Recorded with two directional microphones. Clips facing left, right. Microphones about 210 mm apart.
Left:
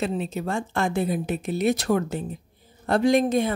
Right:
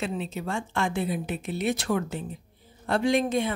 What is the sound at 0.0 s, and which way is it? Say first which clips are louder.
Speech: left 4 dB; 40° left (ahead or behind).